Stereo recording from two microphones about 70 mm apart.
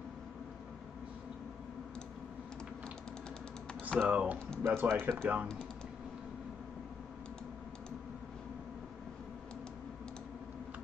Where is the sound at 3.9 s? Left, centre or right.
Right.